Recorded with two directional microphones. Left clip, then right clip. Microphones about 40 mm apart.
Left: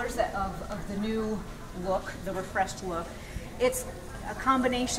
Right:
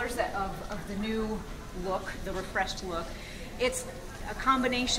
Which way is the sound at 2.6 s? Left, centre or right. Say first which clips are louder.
Left 2 dB; right.